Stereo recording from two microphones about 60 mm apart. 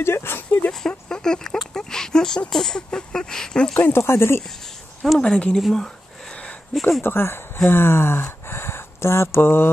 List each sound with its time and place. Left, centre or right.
0.0 s speech: left
0.7 s speech: centre
3.7 s speech: left
4.0 s speech: left
5.2 s speech: centre
5.6 s speech: centre
6.9 s speech: left